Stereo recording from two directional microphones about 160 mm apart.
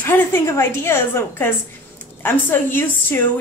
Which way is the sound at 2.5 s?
15° left (ahead or behind).